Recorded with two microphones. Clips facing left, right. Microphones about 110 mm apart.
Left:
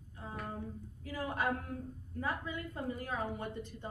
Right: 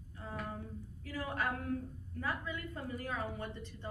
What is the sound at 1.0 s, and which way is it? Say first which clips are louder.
A woman's voice: left 2 dB; 20° left (ahead or behind).